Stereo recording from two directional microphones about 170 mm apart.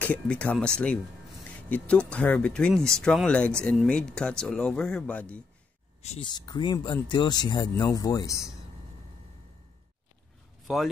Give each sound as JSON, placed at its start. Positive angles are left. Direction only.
{"t": 0.0, "sound": "speech", "side_deg": 10}
{"t": 6.0, "sound": "speech", "side_deg": 30}
{"t": 10.7, "sound": "speech", "side_deg": 0}